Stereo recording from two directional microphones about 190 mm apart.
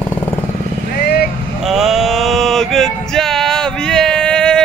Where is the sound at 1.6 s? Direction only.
Centre (ahead or behind).